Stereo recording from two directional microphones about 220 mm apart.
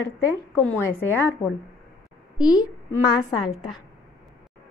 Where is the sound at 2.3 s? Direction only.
15° left (ahead or behind).